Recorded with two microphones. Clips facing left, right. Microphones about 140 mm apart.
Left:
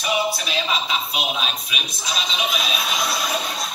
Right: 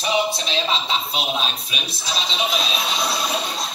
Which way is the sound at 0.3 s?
30° right (ahead or behind).